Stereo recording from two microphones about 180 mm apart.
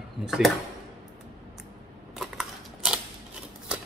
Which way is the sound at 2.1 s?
Centre (ahead or behind).